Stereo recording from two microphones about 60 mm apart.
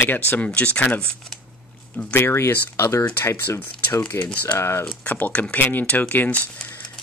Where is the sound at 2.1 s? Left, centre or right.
Left.